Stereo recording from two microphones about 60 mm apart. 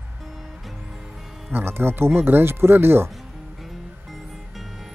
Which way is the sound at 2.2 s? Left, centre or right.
Right.